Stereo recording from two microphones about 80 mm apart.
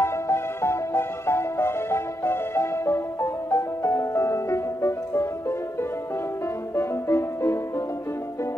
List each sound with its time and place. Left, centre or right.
0.0 s music: left
6.7 s music: left